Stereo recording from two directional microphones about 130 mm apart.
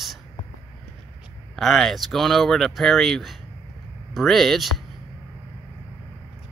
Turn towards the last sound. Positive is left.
turn(degrees=0)  # may be behind; listen again after turning